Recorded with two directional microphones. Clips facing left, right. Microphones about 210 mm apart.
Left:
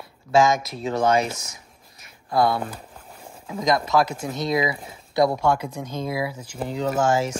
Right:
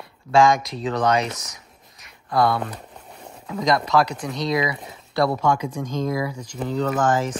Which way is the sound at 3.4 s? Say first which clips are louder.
Right 1 dB; 20° left (ahead or behind).